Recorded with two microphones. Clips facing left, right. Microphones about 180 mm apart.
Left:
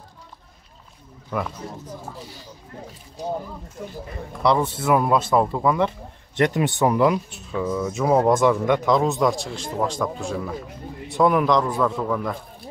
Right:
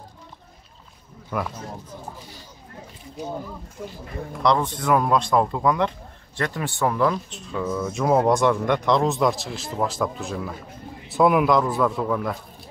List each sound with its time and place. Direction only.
1.3 s a man's voice: 5° right (ahead or behind)
4.4 s a man's voice: 10° left (ahead or behind)
6.3 s a man's voice: 20° left (ahead or behind); by 12.4 s 5° right (ahead or behind)